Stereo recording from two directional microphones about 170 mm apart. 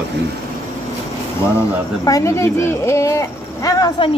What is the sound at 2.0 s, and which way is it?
Speech, 20° left (ahead or behind).